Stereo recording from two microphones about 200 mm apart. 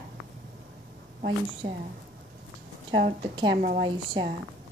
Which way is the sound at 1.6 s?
55° right (ahead or behind).